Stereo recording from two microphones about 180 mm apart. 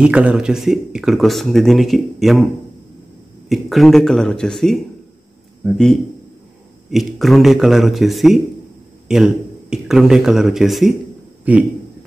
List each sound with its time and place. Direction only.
0.0 s speech: 5° right (ahead or behind)
3.4 s a man's voice: centre (ahead or behind)